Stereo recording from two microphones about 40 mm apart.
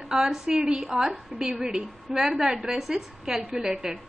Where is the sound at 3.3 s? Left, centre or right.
Centre.